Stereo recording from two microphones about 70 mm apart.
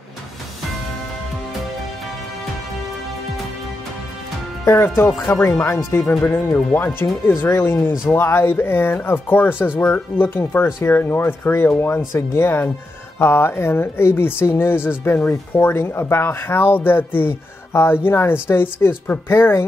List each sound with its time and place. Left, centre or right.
4.6 s speech: left